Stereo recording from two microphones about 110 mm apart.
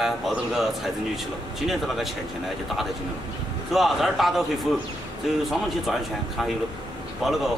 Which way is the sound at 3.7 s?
Centre (ahead or behind).